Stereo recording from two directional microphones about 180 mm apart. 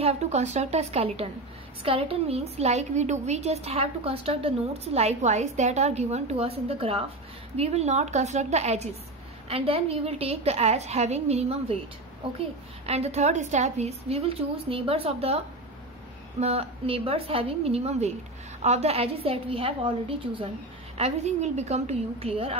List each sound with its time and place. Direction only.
0.0 s a woman's voice: 40° right (ahead or behind)
12.8 s a woman's voice: 35° right (ahead or behind)